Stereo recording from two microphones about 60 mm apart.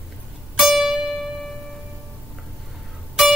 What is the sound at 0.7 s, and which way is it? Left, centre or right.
Music, centre.